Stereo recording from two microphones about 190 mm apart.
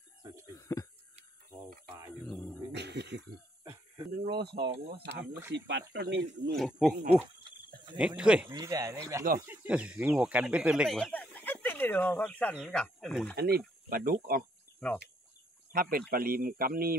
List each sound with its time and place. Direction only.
0.2 s speech: 15° right (ahead or behind)
0.6 s speech: 15° left (ahead or behind)
1.9 s a sound: 15° right (ahead or behind)
2.7 s a sound: 65° right (ahead or behind)
4.2 s speech: 60° right (ahead or behind)
5.2 s speech: 10° right (ahead or behind)
5.5 s speech: 65° right (ahead or behind)
6.5 s speech: centre (ahead or behind)
7.4 s cricket: 25° right (ahead or behind)
8.2 s speech: 5° right (ahead or behind)
8.5 s speech: 20° right (ahead or behind); by 13.4 s 5° left (ahead or behind)
13.4 s speech: 50° right (ahead or behind)
14.8 s speech: 5° left (ahead or behind)
15.7 s speech: 50° right (ahead or behind)